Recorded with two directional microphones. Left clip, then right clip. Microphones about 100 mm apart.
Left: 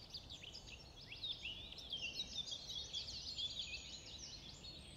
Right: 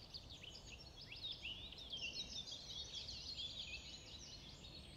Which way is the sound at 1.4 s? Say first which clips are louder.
Left 1 dB; 45° left (ahead or behind).